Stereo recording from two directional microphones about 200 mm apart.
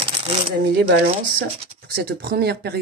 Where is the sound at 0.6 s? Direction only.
55° right (ahead or behind).